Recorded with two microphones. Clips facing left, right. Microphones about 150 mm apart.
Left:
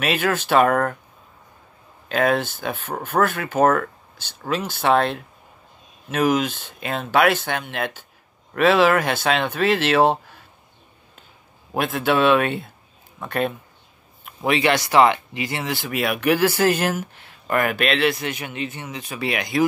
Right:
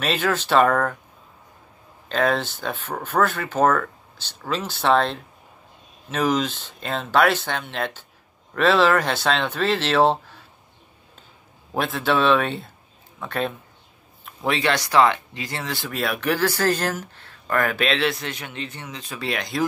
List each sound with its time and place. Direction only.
0.0 s speech: 5° left (ahead or behind)
2.0 s speech: 10° left (ahead or behind)
11.7 s speech: 5° left (ahead or behind)
16.4 s speech: 20° left (ahead or behind)
16.7 s speech: 10° left (ahead or behind)